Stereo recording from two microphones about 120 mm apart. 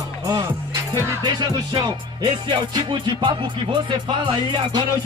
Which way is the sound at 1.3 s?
35° right (ahead or behind).